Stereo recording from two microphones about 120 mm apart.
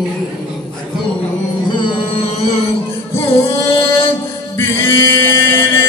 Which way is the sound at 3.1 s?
55° left (ahead or behind).